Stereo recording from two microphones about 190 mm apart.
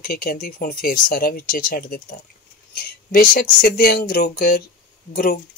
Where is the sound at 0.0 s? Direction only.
50° left (ahead or behind).